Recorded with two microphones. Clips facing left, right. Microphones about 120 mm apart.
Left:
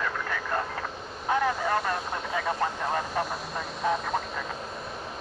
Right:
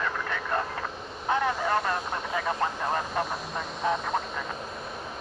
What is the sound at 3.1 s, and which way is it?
Vehicle, centre (ahead or behind).